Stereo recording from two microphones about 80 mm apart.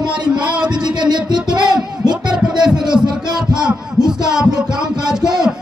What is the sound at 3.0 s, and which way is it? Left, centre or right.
Music, right.